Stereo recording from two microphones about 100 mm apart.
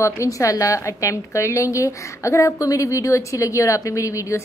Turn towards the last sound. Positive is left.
turn(degrees=30)  # may be behind; listen again after turning